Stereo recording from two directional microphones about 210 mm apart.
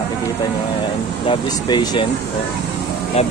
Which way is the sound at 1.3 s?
20° left (ahead or behind).